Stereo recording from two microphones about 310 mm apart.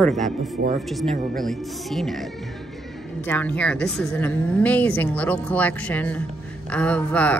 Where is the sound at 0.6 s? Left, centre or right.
Right.